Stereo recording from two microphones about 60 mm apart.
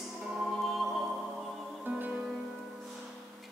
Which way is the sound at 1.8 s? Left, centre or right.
Right.